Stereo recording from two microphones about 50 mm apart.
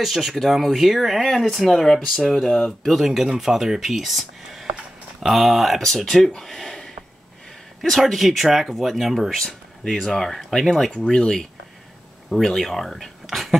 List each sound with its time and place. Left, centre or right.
0.0 s speech: centre
3.0 s speech: centre
8.0 s speech: centre